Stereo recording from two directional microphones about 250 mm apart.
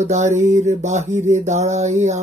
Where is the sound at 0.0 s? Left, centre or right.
Right.